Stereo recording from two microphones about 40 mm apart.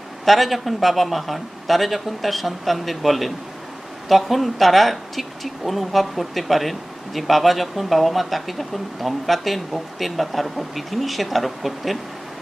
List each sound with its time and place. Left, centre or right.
0.2 s speech: centre